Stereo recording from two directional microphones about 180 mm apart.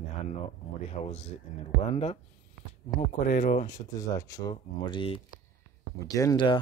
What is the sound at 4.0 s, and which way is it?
Speech, 20° left (ahead or behind).